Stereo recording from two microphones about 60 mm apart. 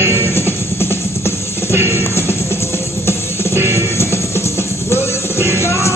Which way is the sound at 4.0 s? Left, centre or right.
Left.